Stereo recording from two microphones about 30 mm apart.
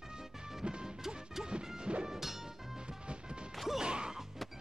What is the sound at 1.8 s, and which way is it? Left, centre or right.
Music, right.